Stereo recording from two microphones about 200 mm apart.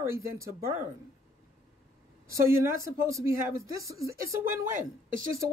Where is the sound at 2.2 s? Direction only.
15° right (ahead or behind).